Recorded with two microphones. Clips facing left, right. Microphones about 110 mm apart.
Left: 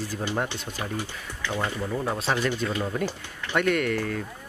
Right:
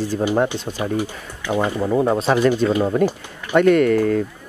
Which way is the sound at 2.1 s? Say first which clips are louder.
Right 8 dB; 45° right (ahead or behind).